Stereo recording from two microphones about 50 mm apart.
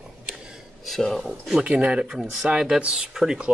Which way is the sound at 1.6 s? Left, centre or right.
Right.